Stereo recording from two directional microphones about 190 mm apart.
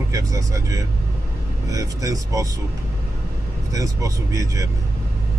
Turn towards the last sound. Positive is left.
turn(degrees=-15)  # may be behind; listen again after turning